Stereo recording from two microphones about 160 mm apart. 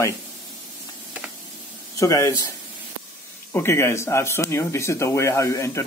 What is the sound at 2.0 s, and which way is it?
Speech, 20° left (ahead or behind).